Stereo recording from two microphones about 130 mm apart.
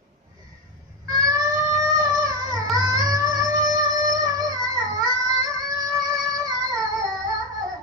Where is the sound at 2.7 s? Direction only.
25° right (ahead or behind).